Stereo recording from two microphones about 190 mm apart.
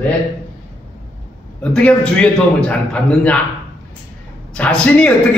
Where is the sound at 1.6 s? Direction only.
5° left (ahead or behind).